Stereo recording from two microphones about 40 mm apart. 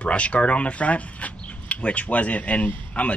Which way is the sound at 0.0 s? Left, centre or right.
Left.